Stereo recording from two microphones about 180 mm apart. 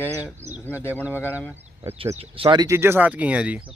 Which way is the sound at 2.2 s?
25° right (ahead or behind).